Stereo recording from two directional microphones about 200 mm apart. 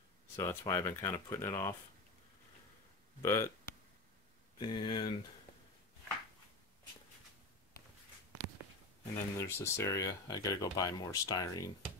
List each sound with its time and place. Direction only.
0.4 s speech: 15° left (ahead or behind)
3.2 s speech: 15° left (ahead or behind)
9.1 s speech: 15° left (ahead or behind)